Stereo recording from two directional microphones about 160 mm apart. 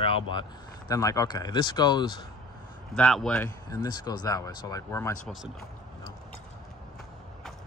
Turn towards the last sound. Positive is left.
turn(degrees=0)  # may be behind; listen again after turning